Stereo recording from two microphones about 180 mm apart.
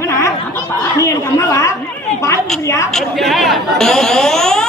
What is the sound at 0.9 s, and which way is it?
A woman's voice, 15° left (ahead or behind).